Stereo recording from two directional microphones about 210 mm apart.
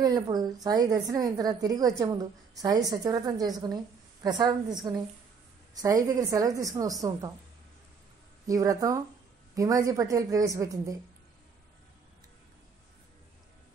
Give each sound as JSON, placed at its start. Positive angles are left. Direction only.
{"t": 0.0, "sound": "a woman's voice", "side_deg": -20}
{"t": 8.5, "sound": "a woman's voice", "side_deg": -15}